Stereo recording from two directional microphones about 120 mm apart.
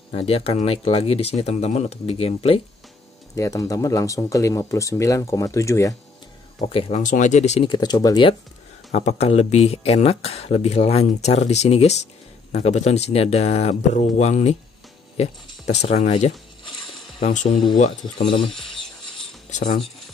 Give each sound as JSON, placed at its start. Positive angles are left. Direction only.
{"t": 0.1, "sound": "speech", "side_deg": 55}
{"t": 3.3, "sound": "speech", "side_deg": 30}
{"t": 6.7, "sound": "speech", "side_deg": 50}
{"t": 7.0, "sound": "speech", "side_deg": 90}
{"t": 7.6, "sound": "speech", "side_deg": 40}
{"t": 8.9, "sound": "speech", "side_deg": 65}
{"t": 18.4, "sound": "ratchet", "side_deg": 5}